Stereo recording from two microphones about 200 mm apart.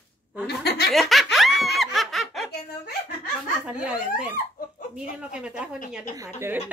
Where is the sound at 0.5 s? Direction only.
55° left (ahead or behind).